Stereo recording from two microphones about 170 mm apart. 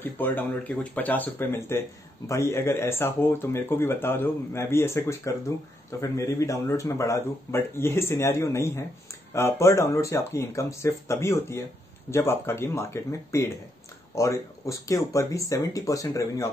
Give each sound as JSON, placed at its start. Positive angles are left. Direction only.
{"t": 0.0, "sound": "speech", "side_deg": 10}